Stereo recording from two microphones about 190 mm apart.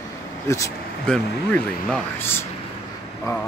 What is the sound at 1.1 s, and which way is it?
Speech, 5° left (ahead or behind).